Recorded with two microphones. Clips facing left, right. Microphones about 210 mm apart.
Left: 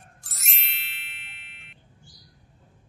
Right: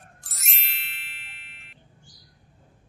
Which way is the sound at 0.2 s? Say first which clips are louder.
Left 1 dB; centre (ahead or behind).